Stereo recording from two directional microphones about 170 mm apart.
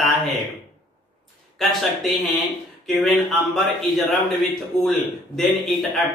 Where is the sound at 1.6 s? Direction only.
Centre (ahead or behind).